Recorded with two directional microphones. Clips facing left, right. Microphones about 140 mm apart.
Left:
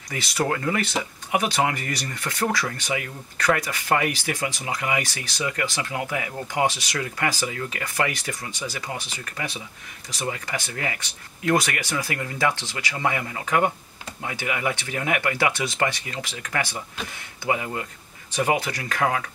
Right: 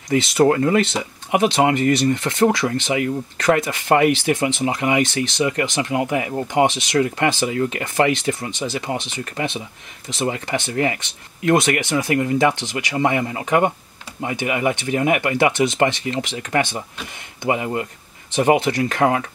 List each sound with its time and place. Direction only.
0.1 s speech: 25° right (ahead or behind)